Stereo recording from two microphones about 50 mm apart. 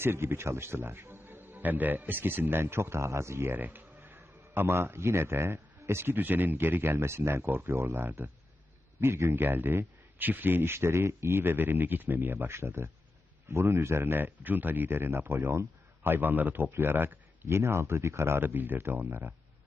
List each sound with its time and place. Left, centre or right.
0.0 s a man's voice: right
3.5 s speech: right
4.0 s a man's voice: right
6.1 s speech: right
7.0 s speech: right
9.4 s a man's voice: right
15.0 s a man's voice: right
17.5 s speech: right